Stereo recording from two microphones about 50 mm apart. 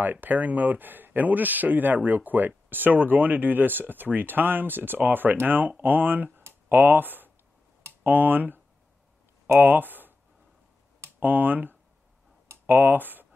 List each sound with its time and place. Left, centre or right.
0.0 s speech: right
9.6 s speech: right
11.1 s speech: right